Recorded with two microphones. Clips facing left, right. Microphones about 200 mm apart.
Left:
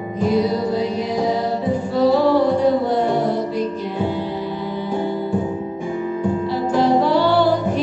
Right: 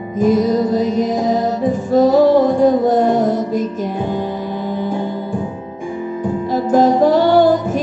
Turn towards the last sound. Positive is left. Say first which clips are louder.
# right 4 dB
turn(degrees=-45)  # may be behind; listen again after turning